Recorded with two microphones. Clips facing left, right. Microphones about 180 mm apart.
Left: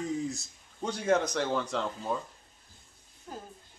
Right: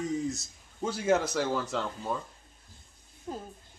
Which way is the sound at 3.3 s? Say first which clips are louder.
Right 5 dB; 20° right (ahead or behind).